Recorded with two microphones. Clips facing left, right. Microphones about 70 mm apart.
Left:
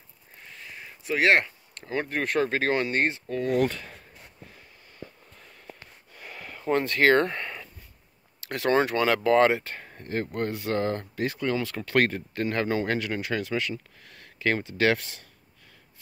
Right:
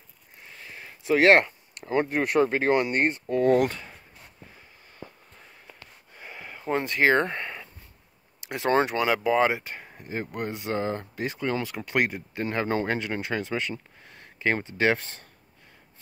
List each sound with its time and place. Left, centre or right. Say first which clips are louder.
1.0 s speech: right 4 dB; right
3.4 s speech: right 3 dB; right
6.1 s a sound: even; centre
8.4 s speech: even; right